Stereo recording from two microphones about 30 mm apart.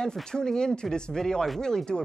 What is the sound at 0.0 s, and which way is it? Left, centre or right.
Speech, left.